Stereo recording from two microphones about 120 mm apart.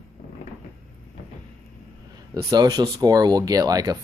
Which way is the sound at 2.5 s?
35° right (ahead or behind).